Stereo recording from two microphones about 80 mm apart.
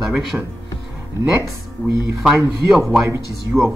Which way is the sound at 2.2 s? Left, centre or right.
Centre.